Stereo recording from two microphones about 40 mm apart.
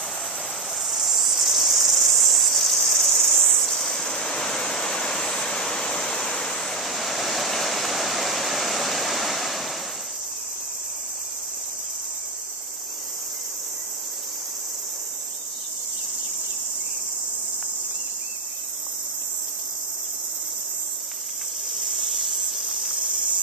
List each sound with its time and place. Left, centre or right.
0.8 s cricket: centre
21.7 s insect: centre